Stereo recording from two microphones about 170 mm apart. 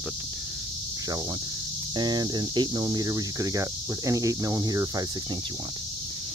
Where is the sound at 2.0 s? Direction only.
25° right (ahead or behind).